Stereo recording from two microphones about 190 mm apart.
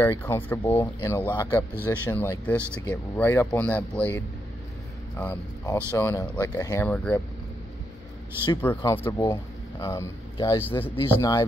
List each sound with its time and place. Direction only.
0.0 s speech: 10° left (ahead or behind)
5.2 s speech: 10° left (ahead or behind)
8.6 s speech: 10° left (ahead or behind)